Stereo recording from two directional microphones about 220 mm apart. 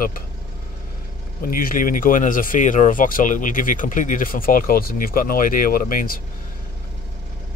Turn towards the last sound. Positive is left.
turn(degrees=40)  # may be behind; listen again after turning